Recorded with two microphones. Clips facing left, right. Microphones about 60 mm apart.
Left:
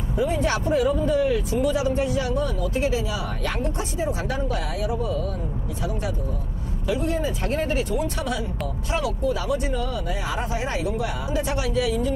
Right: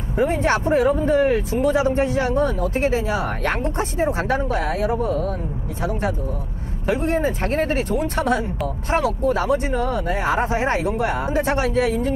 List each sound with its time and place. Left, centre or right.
0.1 s speech: right